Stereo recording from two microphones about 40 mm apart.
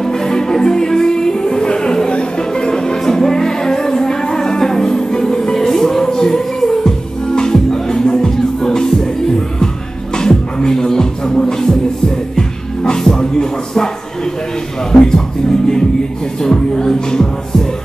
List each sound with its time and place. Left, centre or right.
0.0 s music: centre
10.1 s music: centre
14.9 s music: centre
16.3 s music: centre